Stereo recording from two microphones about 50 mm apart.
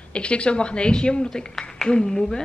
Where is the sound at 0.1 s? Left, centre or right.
Left.